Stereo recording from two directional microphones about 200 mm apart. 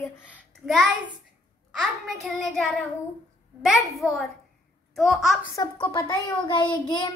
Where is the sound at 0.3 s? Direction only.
Centre (ahead or behind).